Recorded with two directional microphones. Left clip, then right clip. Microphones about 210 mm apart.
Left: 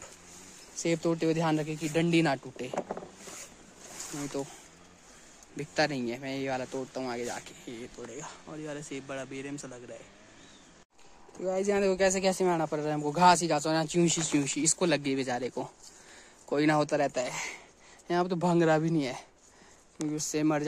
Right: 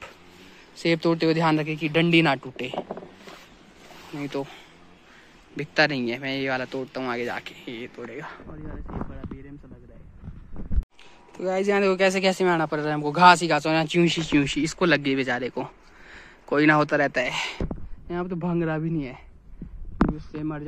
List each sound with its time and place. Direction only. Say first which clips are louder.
0.8 s speech: right 7 dB; centre (ahead or behind)
2.7 s speech: even; 30° left (ahead or behind)
5.6 s speech: right 7 dB; 5° left (ahead or behind)
11.3 s speech: right 6 dB; centre (ahead or behind)
20.3 s speech: left 4 dB; 15° left (ahead or behind)